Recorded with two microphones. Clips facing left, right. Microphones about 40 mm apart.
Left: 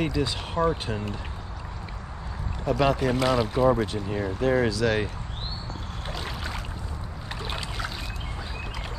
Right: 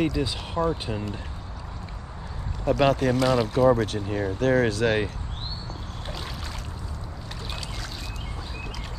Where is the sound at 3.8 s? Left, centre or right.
Right.